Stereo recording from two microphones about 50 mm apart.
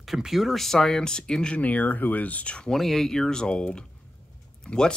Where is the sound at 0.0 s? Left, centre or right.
Centre.